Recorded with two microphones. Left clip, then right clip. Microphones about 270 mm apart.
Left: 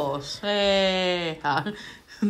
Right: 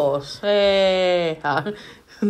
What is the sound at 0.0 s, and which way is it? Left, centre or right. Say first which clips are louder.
Speech: right 7 dB; centre.